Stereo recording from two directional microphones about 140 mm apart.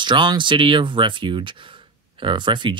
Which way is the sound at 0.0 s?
35° right (ahead or behind).